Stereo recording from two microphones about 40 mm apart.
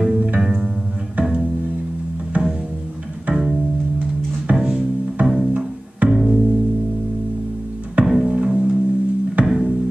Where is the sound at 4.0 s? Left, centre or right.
Right.